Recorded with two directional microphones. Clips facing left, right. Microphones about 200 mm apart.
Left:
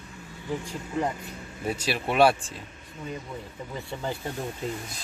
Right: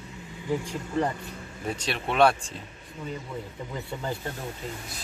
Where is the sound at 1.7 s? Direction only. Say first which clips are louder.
Left 2 dB; 5° left (ahead or behind).